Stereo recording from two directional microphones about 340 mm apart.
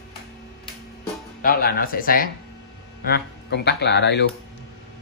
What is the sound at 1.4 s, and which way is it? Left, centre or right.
Speech, left.